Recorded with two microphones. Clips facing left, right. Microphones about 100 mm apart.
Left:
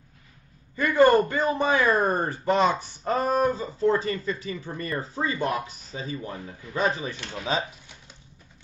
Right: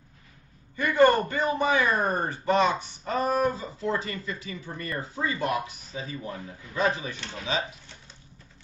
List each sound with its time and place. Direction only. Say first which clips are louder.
0.7 s speech: left 2 dB; 35° left (ahead or behind)